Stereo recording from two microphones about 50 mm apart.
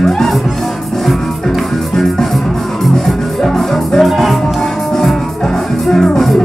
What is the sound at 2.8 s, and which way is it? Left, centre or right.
Music, centre.